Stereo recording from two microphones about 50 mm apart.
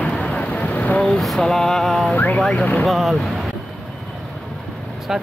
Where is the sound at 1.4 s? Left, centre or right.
Centre.